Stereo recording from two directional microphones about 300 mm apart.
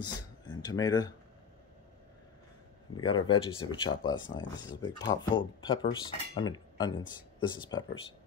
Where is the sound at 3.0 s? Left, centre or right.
Centre.